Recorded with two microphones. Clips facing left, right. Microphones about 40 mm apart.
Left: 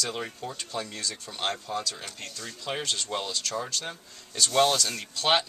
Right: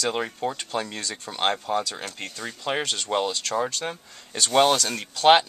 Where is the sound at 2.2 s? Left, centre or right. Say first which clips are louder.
Right 5 dB; right.